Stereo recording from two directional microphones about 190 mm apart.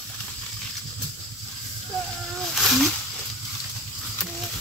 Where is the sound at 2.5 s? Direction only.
Centre (ahead or behind).